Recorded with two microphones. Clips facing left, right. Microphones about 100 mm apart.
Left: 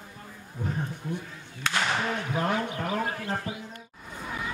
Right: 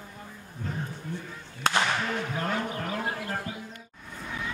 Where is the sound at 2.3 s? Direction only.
20° left (ahead or behind).